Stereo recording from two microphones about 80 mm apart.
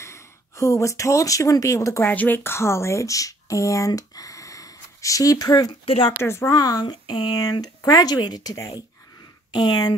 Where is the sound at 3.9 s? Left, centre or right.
Left.